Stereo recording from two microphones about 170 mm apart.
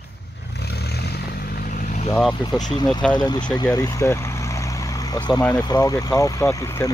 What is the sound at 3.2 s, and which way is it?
Speech, 25° left (ahead or behind).